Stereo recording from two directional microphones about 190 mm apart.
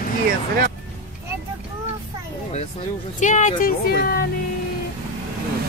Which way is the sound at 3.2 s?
40° left (ahead or behind).